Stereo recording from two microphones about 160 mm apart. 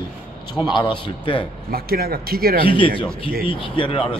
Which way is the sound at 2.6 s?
30° left (ahead or behind).